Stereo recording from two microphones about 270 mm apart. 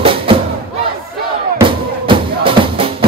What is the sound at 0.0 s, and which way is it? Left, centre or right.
Thump, centre.